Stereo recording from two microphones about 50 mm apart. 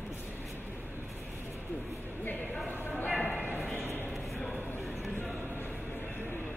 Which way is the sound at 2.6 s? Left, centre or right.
Left.